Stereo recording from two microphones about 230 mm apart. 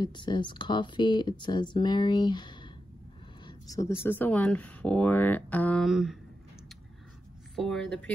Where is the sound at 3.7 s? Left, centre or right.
Centre.